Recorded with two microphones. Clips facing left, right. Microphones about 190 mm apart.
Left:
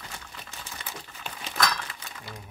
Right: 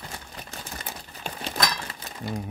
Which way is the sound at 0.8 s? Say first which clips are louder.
Right 3 dB; 35° right (ahead or behind).